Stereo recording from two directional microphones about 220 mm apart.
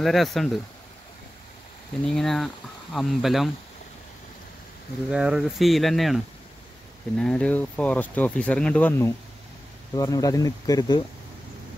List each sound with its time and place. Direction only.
0.0 s speech: centre (ahead or behind)
2.0 s speech: centre (ahead or behind)
5.1 s speech: 5° right (ahead or behind); by 11.0 s 15° left (ahead or behind)